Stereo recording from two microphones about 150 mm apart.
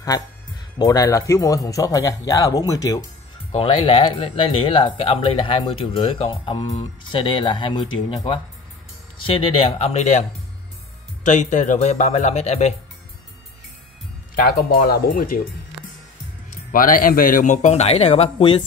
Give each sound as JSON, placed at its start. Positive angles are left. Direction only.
{"t": 0.7, "sound": "speech", "side_deg": 25}
{"t": 3.5, "sound": "speech", "side_deg": 35}
{"t": 11.2, "sound": "a man's voice", "side_deg": 55}
{"t": 14.3, "sound": "speech", "side_deg": 90}
{"t": 16.7, "sound": "a man's voice", "side_deg": 65}